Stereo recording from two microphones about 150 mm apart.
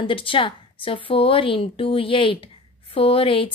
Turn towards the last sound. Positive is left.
turn(degrees=35)  # may be behind; listen again after turning